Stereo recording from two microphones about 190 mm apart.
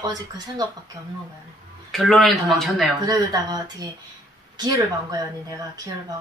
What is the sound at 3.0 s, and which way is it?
Speech, 20° right (ahead or behind).